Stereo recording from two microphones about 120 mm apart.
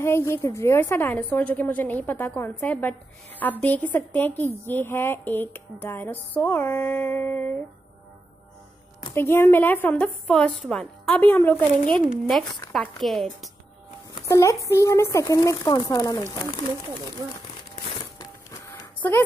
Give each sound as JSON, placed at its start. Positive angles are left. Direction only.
{"t": 0.0, "sound": "a woman's voice", "side_deg": 20}
{"t": 9.1, "sound": "a woman's voice", "side_deg": 20}
{"t": 12.1, "sound": "a woman's voice", "side_deg": 0}
{"t": 14.2, "sound": "speech", "side_deg": 25}